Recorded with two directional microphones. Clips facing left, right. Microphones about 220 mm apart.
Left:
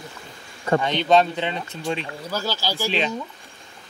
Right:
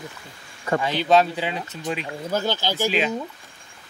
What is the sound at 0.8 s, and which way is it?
Speech, 5° right (ahead or behind).